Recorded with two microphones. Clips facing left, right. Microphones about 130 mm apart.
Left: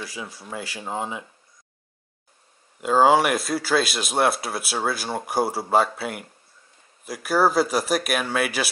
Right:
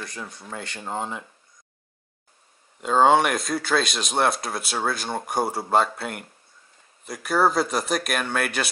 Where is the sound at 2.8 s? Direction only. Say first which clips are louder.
Left 1 dB; 5° left (ahead or behind).